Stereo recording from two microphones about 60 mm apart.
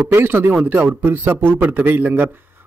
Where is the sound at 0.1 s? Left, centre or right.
Right.